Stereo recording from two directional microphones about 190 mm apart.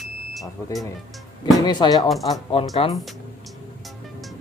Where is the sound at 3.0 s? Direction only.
Centre (ahead or behind).